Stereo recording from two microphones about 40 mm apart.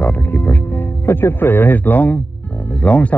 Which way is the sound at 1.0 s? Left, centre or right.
Left.